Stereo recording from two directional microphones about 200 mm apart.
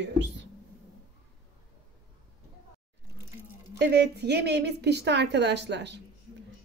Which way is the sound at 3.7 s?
55° right (ahead or behind).